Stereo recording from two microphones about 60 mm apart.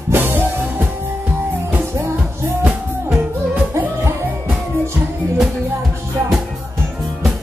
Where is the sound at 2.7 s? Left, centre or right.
Right.